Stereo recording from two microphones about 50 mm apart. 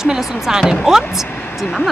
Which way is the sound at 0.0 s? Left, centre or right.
Centre.